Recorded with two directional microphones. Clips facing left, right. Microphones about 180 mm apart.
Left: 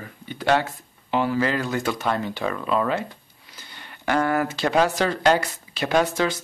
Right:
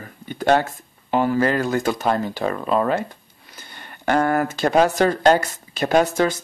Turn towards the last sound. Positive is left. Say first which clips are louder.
# right 3 dB
turn(degrees=-45)  # may be behind; listen again after turning